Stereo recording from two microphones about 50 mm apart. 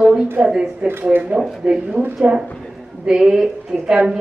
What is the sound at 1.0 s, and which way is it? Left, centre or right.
A woman's voice, right.